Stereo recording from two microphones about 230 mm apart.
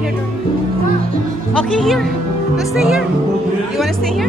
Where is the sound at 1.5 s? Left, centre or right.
Centre.